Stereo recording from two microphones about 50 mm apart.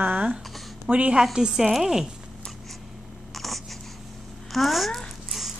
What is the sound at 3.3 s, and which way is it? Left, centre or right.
Writing, centre.